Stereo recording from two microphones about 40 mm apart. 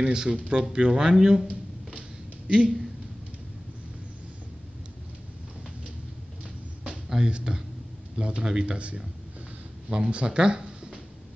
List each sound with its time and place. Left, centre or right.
0.0 s speech: right
2.4 s speech: right
7.1 s speech: right